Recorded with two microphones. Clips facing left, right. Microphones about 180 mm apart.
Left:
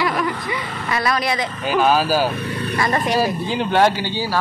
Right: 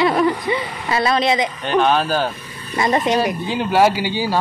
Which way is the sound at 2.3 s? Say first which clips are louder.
Left 11 dB; 70° left (ahead or behind).